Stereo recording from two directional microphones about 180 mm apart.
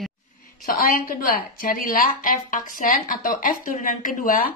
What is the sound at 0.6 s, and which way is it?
A woman's voice, 50° left (ahead or behind).